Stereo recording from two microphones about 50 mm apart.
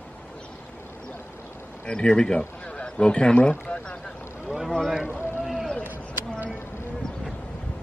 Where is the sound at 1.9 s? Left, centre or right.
Centre.